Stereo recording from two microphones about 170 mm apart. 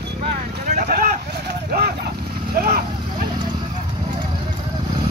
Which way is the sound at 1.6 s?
65° right (ahead or behind).